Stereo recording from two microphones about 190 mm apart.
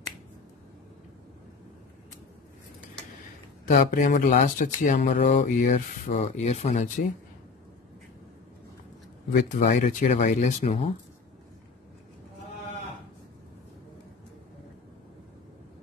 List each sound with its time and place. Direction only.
3.6 s speech: 45° left (ahead or behind)
9.3 s speech: 45° left (ahead or behind)